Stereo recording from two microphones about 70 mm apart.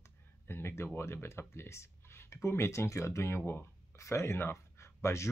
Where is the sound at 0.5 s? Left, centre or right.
Left.